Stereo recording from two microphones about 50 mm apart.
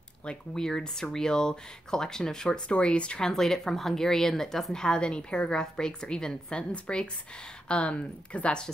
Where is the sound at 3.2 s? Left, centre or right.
Centre.